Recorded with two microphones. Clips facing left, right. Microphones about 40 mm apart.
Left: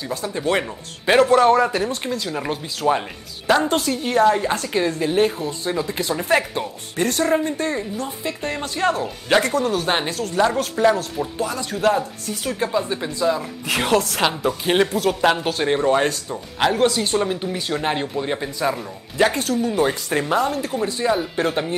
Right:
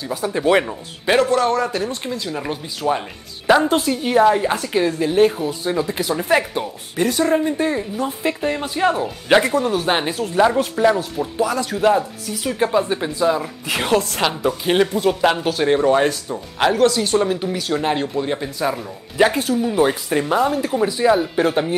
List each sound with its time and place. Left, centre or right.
0.1 s speech: centre
1.0 s a man's voice: centre
1.9 s speech: centre
3.4 s speech: centre
12.5 s speech: centre
13.7 s speech: centre
16.7 s speech: left
17.2 s speech: centre